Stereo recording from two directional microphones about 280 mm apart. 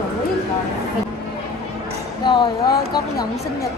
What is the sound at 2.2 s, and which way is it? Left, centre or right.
Speech, centre.